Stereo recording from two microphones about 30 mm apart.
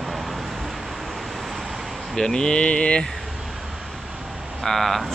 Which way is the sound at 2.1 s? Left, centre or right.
Left.